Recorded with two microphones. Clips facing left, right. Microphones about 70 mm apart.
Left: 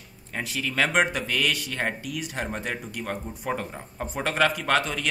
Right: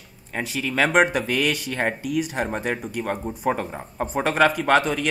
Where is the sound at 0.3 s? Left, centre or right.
Centre.